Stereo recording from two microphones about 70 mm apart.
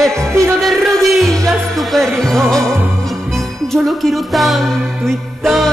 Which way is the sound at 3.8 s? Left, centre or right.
Centre.